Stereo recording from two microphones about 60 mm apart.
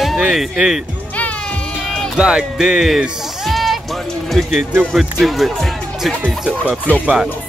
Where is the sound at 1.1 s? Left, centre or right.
Left.